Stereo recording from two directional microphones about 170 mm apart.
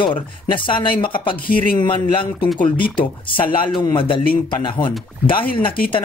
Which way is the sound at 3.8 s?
25° left (ahead or behind).